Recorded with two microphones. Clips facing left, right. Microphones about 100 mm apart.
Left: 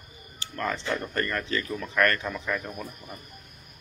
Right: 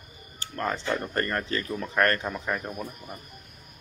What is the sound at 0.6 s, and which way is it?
Speech, 20° right (ahead or behind).